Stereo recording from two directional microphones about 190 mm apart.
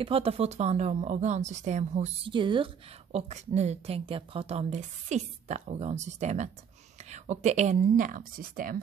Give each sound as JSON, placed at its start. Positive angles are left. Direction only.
{"t": 0.0, "sound": "a woman's voice", "side_deg": -30}